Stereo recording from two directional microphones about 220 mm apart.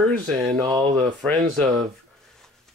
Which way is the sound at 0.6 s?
15° right (ahead or behind).